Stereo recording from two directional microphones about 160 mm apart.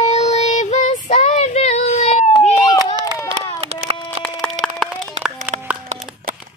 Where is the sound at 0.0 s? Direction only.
45° left (ahead or behind).